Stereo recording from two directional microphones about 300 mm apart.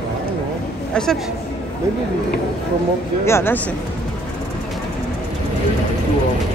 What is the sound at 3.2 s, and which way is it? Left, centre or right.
Speech, centre.